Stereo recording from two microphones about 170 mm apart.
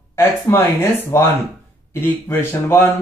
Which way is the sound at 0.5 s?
15° left (ahead or behind).